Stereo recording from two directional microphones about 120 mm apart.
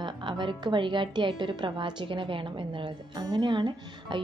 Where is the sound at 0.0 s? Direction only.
40° right (ahead or behind).